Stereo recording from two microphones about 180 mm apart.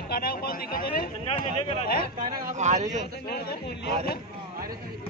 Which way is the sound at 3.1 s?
60° left (ahead or behind).